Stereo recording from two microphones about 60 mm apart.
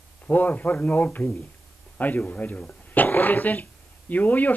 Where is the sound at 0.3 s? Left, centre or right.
Left.